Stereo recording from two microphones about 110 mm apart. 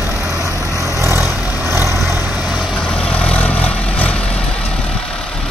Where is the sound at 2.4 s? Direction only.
Centre (ahead or behind).